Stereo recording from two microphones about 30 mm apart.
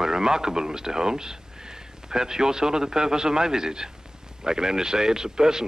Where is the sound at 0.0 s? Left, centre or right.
Centre.